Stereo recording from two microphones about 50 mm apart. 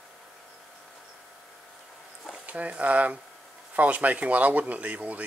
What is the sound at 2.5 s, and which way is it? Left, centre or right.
Speech, right.